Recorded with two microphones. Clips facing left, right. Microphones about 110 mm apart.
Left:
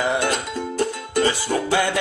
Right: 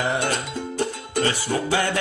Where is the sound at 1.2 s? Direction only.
20° left (ahead or behind).